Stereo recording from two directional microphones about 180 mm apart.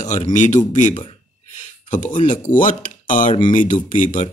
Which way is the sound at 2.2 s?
45° left (ahead or behind).